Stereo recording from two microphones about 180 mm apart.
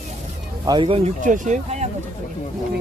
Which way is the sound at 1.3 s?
45° right (ahead or behind).